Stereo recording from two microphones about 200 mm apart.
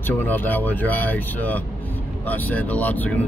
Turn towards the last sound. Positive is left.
turn(degrees=10)  # may be behind; listen again after turning